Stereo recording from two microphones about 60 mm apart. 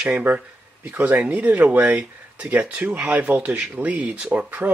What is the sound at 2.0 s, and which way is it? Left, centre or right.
Speech, right.